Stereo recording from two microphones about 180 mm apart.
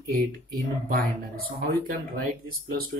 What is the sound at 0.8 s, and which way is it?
Speech, 55° right (ahead or behind).